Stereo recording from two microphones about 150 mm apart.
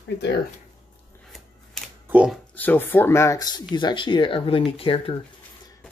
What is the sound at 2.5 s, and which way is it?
Speech, 10° left (ahead or behind).